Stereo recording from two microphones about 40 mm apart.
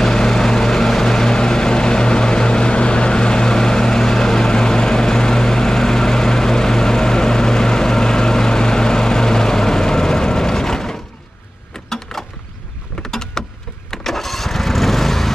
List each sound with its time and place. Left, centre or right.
0.0 s vehicle: centre
11.9 s a sound: centre
13.8 s vehicle: centre